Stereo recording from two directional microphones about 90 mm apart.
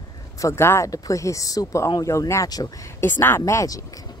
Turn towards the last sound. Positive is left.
turn(degrees=40)  # may be behind; listen again after turning